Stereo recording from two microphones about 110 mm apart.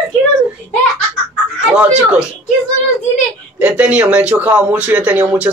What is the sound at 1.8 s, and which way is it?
Speech, 10° right (ahead or behind).